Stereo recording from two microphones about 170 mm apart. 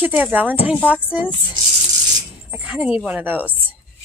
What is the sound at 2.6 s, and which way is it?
Speech, 5° right (ahead or behind).